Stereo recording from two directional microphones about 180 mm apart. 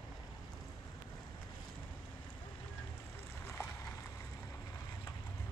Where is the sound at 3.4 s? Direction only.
15° left (ahead or behind).